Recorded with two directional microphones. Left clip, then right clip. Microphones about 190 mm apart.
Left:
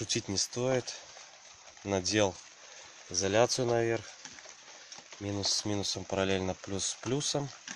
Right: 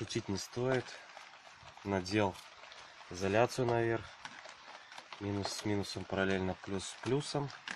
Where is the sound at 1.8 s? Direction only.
20° left (ahead or behind).